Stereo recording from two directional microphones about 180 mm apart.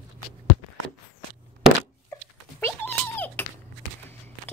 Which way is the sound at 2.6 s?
10° left (ahead or behind).